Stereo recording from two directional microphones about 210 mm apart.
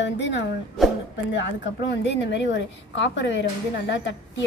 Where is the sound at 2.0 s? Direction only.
60° left (ahead or behind).